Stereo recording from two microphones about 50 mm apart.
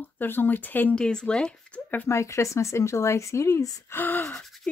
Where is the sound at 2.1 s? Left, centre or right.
Left.